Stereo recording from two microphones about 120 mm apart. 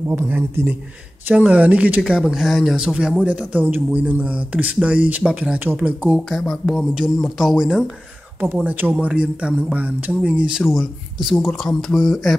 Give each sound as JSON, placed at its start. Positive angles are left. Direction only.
{"t": 0.1, "sound": "speech", "side_deg": -20}
{"t": 6.1, "sound": "speech", "side_deg": 5}